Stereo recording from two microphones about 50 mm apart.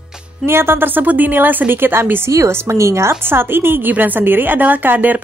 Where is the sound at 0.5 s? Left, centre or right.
Right.